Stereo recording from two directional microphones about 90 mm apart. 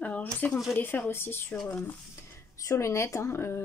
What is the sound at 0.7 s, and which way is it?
Speech, 20° left (ahead or behind).